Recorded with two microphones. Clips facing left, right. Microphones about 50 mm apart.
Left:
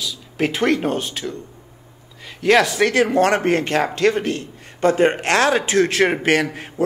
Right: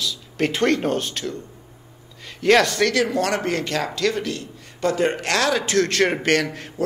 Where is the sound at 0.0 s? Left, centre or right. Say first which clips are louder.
Left 1 dB; centre.